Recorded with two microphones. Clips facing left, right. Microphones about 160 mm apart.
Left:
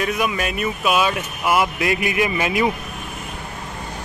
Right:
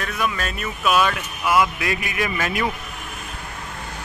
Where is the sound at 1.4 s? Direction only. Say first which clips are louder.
Even; 25° left (ahead or behind).